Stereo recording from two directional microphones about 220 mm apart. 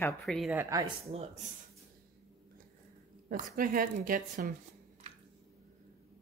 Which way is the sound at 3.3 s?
40° right (ahead or behind).